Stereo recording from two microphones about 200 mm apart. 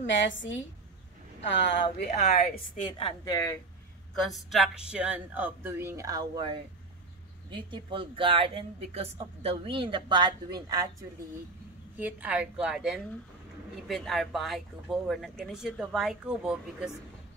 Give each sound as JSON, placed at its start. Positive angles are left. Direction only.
{"t": 0.0, "sound": "a woman's voice", "side_deg": 65}
{"t": 2.3, "sound": "speech", "side_deg": 35}
{"t": 4.1, "sound": "speech", "side_deg": 0}
{"t": 7.5, "sound": "speech", "side_deg": -25}
{"t": 12.0, "sound": "speech", "side_deg": -5}